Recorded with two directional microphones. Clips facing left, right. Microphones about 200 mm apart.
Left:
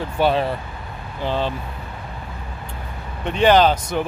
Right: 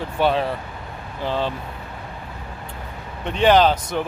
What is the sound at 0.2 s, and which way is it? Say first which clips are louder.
Speech: left 1 dB; centre (ahead or behind).